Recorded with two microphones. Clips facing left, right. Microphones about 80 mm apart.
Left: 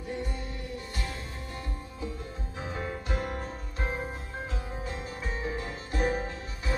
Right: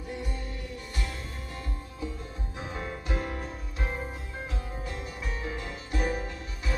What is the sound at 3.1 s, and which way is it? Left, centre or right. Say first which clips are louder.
Music: even; left.